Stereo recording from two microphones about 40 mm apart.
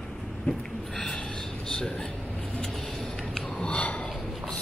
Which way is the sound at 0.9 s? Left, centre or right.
Centre.